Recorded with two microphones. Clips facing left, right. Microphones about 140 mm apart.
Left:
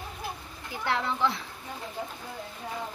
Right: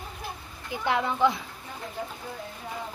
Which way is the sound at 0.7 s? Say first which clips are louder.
Right 3 dB; 15° right (ahead or behind).